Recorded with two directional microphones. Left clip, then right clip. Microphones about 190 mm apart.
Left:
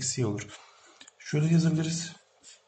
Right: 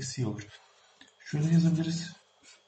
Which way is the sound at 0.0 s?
45° left (ahead or behind).